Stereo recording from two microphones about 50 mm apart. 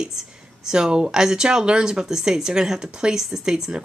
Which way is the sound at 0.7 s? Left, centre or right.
Centre.